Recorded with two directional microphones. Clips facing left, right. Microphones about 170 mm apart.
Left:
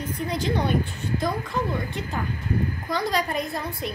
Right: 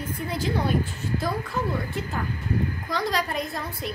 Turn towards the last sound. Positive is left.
turn(degrees=0)  # may be behind; listen again after turning